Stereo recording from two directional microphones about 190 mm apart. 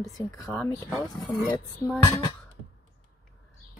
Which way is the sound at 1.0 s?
20° left (ahead or behind).